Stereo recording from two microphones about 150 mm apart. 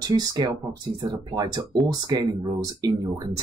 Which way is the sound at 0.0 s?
25° right (ahead or behind).